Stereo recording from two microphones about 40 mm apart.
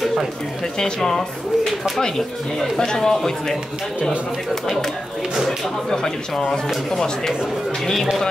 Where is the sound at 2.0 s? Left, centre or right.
Centre.